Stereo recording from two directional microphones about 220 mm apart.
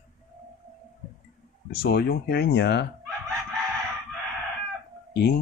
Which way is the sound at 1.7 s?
45° left (ahead or behind).